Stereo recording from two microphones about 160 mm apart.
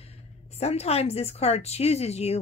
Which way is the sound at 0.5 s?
40° left (ahead or behind).